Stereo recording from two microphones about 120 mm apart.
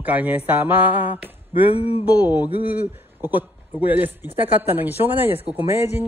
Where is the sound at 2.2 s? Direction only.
15° right (ahead or behind).